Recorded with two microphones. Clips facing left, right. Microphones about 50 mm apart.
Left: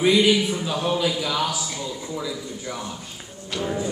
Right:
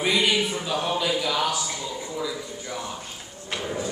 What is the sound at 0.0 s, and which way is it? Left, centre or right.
Speech, centre.